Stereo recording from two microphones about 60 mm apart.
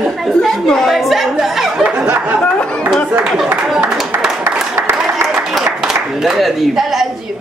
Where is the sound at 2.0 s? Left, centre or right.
Right.